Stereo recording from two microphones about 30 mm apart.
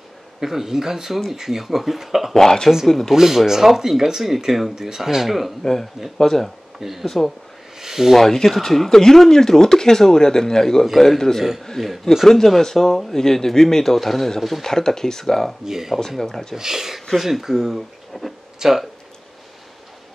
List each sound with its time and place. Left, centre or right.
0.4 s speech: centre
2.3 s speech: centre
3.1 s speech: centre
5.6 s speech: centre
6.8 s speech: centre
7.1 s speech: centre
7.8 s a sound: centre
8.1 s speech: centre
12.3 s speech: centre
15.6 s speech: centre
16.2 s speech: centre
16.5 s speech: centre
18.1 s speech: centre
18.6 s speech: centre